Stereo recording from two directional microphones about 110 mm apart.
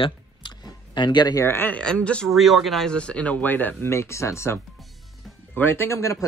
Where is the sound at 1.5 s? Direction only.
20° left (ahead or behind).